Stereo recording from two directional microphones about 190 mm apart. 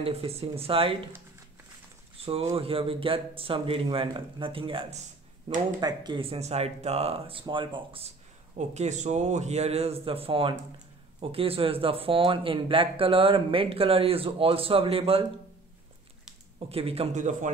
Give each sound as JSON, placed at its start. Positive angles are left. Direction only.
{"t": 0.0, "sound": "speech", "side_deg": -30}
{"t": 2.5, "sound": "speech", "side_deg": -30}
{"t": 8.5, "sound": "speech", "side_deg": -35}
{"t": 16.5, "sound": "speech", "side_deg": -30}